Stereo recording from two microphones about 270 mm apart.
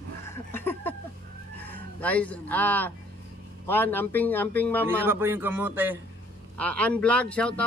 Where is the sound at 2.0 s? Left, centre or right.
Centre.